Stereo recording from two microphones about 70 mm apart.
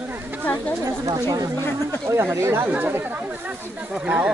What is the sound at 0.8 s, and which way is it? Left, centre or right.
Speech, right.